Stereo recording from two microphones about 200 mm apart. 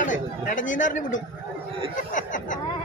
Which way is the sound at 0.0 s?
40° left (ahead or behind).